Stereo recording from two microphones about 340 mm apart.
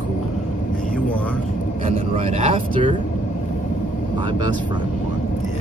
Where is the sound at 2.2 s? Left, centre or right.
Centre.